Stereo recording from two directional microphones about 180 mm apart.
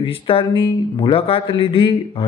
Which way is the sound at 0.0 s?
30° left (ahead or behind).